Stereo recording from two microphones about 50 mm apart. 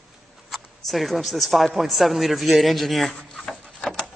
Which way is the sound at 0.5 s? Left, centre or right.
Centre.